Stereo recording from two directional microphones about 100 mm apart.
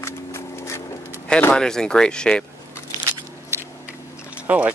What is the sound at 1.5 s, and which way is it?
Speech, 5° left (ahead or behind).